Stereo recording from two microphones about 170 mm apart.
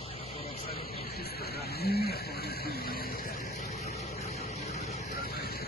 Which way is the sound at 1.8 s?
70° left (ahead or behind).